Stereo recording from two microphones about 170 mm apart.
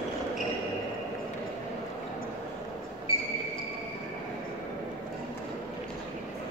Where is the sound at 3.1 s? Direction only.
30° left (ahead or behind).